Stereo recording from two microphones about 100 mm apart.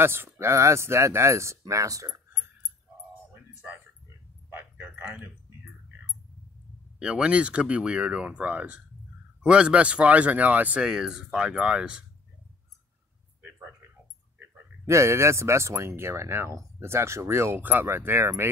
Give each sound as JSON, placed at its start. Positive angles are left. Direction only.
{"t": 0.0, "sound": "speech", "side_deg": -25}
{"t": 4.5, "sound": "a sound", "side_deg": -20}
{"t": 7.0, "sound": "speech", "side_deg": -10}
{"t": 14.9, "sound": "speech", "side_deg": -30}